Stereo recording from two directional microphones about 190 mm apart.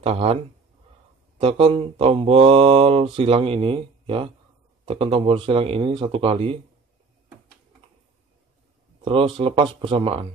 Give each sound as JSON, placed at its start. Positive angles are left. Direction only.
{"t": 0.0, "sound": "speech", "side_deg": -30}
{"t": 1.4, "sound": "mantra", "side_deg": -30}
{"t": 9.0, "sound": "mantra", "side_deg": -30}